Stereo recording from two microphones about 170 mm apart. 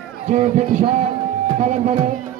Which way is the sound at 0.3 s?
45° right (ahead or behind).